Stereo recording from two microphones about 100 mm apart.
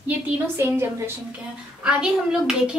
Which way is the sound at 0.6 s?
25° right (ahead or behind).